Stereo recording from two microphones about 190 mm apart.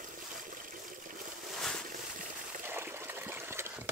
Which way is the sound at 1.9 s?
45° right (ahead or behind).